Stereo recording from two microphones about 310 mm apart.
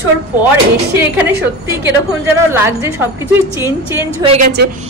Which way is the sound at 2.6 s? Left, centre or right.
Centre.